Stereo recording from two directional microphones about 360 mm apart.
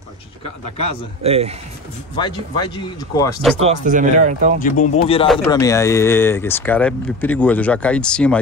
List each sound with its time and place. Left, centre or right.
1.2 s speech: centre
2.1 s speech: centre
3.6 s speech: right
4.6 s speech: left; by 8.4 s centre